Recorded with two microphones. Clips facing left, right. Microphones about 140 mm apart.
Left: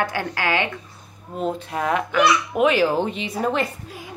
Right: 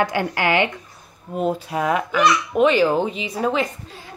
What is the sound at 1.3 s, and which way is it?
Speech, 5° right (ahead or behind).